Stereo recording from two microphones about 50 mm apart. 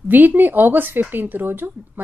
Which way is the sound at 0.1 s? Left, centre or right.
Right.